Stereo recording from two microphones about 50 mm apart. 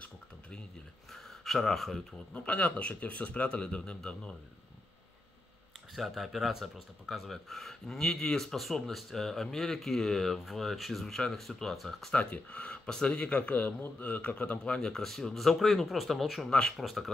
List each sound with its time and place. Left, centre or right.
1.1 s a sound: centre
2.3 s speech: left
5.9 s speech: centre
12.1 s a man's voice: left
14.6 s speech: centre
16.4 s speech: centre
16.7 s speech: centre